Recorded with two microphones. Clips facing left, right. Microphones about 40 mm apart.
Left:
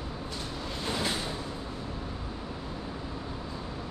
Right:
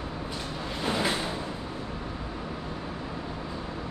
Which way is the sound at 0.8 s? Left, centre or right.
Right.